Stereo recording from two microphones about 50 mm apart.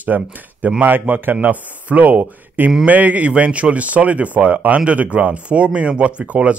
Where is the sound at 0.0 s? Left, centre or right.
Right.